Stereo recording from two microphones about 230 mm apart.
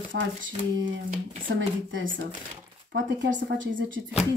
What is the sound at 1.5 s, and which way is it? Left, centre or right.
A woman's voice, right.